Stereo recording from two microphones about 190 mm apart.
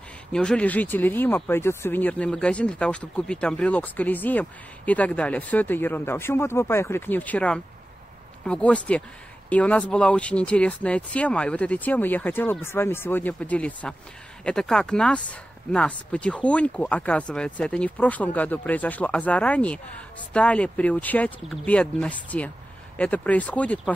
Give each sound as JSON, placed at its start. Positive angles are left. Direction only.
{"t": 0.3, "sound": "speech", "side_deg": 5}